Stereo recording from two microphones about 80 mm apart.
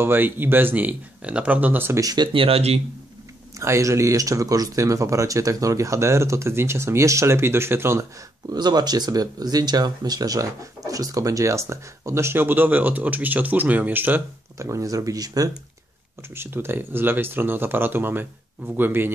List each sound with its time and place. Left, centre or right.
0.0 s speech: right
2.0 s speech: right
3.5 s speech: right
8.5 s speech: right
14.6 s speech: right
16.3 s speech: right